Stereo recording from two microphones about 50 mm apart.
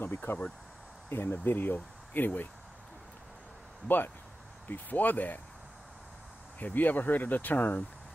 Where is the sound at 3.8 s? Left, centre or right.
Left.